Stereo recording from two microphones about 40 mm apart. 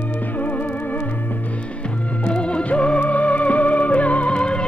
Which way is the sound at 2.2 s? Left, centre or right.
Left.